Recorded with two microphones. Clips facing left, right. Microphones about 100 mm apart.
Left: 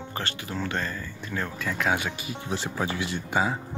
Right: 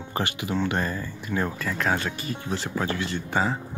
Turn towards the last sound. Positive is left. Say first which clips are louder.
# right 1 dB
turn(degrees=10)  # may be behind; listen again after turning